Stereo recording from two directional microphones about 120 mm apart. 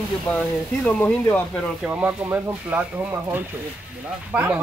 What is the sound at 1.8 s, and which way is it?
A man's voice, 10° right (ahead or behind).